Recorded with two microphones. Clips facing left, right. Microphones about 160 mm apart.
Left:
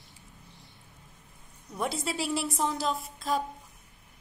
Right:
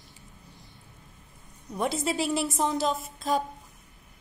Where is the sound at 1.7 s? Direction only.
Centre (ahead or behind).